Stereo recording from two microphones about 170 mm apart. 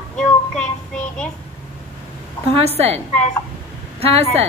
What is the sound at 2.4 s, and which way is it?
Speech, 35° right (ahead or behind).